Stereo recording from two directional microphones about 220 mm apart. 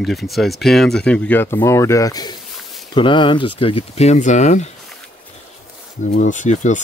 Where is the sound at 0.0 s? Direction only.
Centre (ahead or behind); by 4.6 s 35° left (ahead or behind).